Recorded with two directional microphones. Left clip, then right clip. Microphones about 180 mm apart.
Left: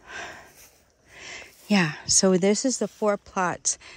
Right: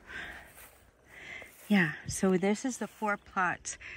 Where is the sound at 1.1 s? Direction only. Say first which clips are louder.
Left 5 dB; 25° left (ahead or behind).